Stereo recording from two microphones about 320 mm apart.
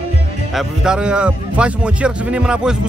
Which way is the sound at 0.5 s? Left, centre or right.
Centre.